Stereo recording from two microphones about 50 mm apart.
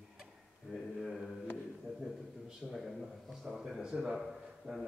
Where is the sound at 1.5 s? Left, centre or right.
Centre.